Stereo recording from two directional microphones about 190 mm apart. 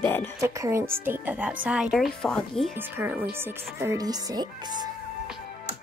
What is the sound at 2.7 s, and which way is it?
Speech, 10° right (ahead or behind).